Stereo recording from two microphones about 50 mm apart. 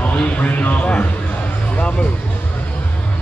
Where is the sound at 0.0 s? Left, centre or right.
Left.